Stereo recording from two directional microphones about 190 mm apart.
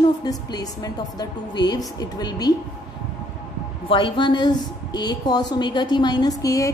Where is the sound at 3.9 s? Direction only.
25° left (ahead or behind).